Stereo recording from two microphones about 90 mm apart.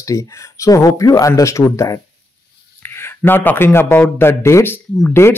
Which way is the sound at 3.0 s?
25° left (ahead or behind).